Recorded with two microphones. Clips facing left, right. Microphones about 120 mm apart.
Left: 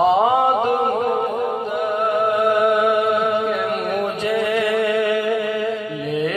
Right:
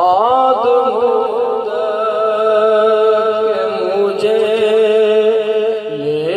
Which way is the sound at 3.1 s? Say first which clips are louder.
Right 6 dB; 25° right (ahead or behind).